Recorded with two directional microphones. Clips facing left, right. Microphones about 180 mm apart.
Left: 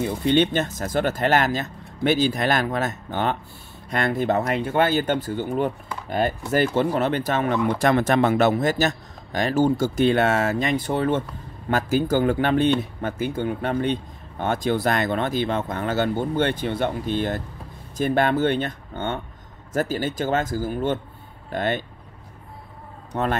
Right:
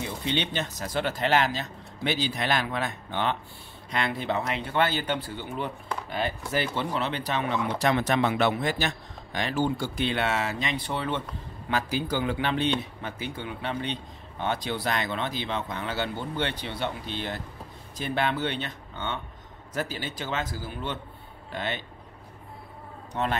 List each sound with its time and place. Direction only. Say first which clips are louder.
0.0 s a man's voice: left 10 dB; 50° left (ahead or behind)
23.1 s a man's voice: left 4 dB; 45° left (ahead or behind)